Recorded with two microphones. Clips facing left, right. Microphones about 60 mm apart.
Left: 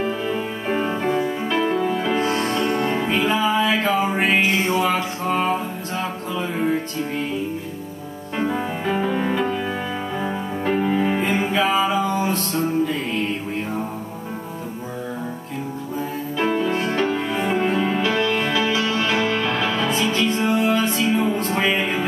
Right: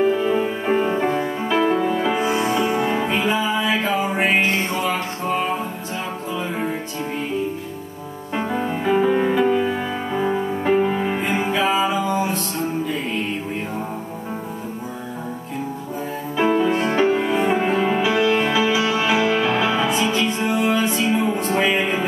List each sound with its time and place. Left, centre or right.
0.1 s music: centre
8.4 s music: centre
16.3 s music: centre; by 21.1 s right
21.1 s music: centre